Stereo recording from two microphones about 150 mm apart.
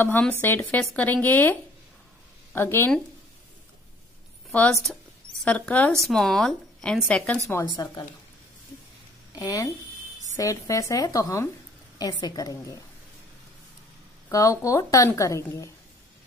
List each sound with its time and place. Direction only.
0.0 s speech: 10° left (ahead or behind)
4.5 s a woman's voice: 5° left (ahead or behind)
7.7 s a woman's voice: 25° left (ahead or behind)
9.3 s a woman's voice: 25° left (ahead or behind)
14.3 s a woman's voice: 20° left (ahead or behind)